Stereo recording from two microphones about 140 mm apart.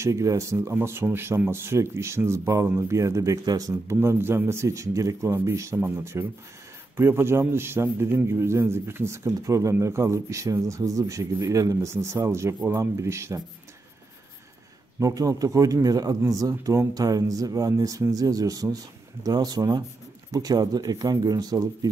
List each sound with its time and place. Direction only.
0.0 s speech: 20° right (ahead or behind)
15.0 s speech: 25° right (ahead or behind)